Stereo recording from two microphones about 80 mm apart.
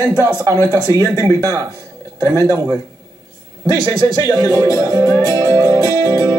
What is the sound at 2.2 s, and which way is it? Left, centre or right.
Music, right.